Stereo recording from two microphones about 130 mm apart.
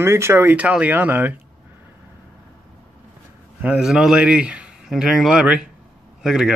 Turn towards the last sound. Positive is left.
turn(degrees=-5)  # may be behind; listen again after turning